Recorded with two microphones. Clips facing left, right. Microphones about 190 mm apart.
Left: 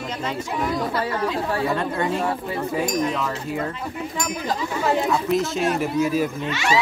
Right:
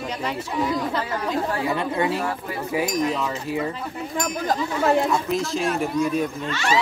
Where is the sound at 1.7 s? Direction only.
5° right (ahead or behind).